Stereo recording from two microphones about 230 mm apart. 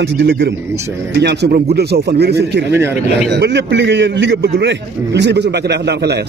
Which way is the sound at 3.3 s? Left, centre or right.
Right.